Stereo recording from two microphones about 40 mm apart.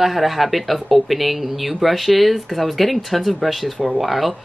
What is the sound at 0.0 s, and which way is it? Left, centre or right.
Speech, centre.